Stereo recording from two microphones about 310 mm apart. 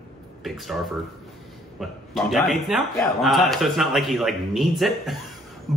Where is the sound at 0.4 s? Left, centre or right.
Centre.